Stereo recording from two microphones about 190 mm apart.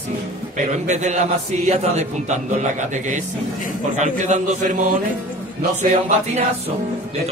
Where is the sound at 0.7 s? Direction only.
40° right (ahead or behind).